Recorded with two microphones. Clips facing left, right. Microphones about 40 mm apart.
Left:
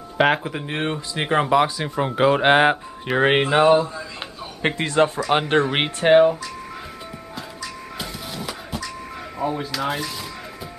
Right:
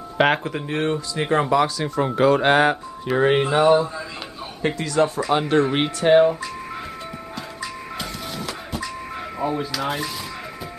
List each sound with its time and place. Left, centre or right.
0.2 s speech: centre
0.7 s speech: left
3.2 s speech: left
4.6 s speech: left
8.0 s music: centre
9.6 s speech: centre